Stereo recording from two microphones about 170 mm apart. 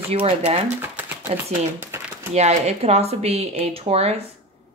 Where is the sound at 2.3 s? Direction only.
40° right (ahead or behind).